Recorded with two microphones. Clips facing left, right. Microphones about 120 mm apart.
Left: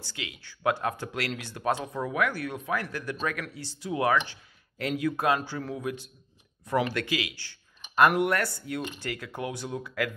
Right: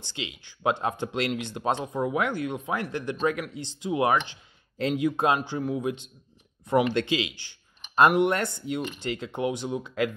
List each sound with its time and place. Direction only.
0.0 s speech: 20° right (ahead or behind)